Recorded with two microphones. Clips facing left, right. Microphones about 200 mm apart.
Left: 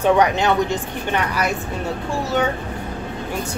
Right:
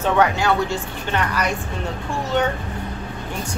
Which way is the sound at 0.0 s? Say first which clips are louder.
Left 2 dB; 20° left (ahead or behind).